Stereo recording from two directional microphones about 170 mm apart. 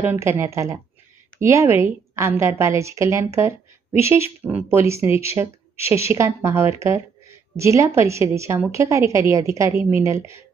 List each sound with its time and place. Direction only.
0.0 s a woman's voice: 15° right (ahead or behind)